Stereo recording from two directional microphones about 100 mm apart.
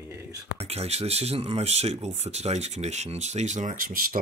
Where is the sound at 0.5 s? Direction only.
90° right.